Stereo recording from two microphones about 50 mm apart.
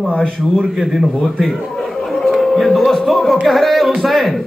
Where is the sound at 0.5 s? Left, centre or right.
Centre.